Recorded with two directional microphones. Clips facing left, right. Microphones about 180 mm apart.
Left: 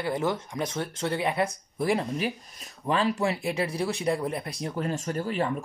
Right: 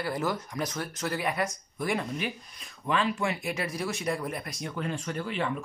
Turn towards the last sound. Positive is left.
turn(degrees=40)  # may be behind; listen again after turning